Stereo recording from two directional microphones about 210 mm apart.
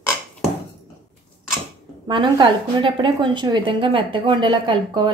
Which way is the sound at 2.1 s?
25° right (ahead or behind).